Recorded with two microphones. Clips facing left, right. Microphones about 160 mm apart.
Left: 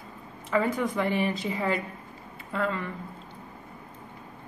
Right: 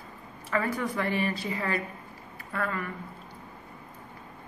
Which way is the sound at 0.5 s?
20° left (ahead or behind).